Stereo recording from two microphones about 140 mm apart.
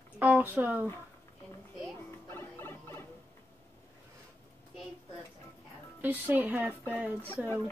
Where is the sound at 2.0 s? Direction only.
15° left (ahead or behind).